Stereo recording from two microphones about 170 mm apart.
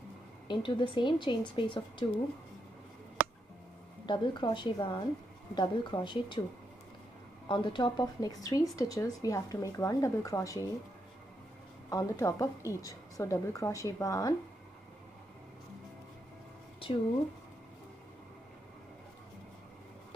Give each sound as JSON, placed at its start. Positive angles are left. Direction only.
{"t": 0.5, "sound": "speech", "side_deg": 30}
{"t": 4.0, "sound": "speech", "side_deg": 25}
{"t": 7.4, "sound": "speech", "side_deg": 30}
{"t": 11.9, "sound": "speech", "side_deg": 20}